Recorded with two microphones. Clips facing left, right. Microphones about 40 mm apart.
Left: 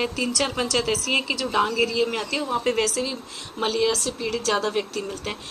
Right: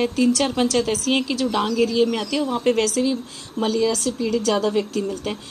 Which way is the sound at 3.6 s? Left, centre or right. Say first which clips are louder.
Right 2 dB; left.